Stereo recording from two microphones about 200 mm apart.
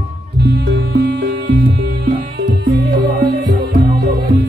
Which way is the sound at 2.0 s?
60° right (ahead or behind).